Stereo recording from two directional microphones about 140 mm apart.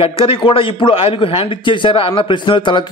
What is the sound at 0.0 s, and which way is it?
A man's voice, 40° left (ahead or behind).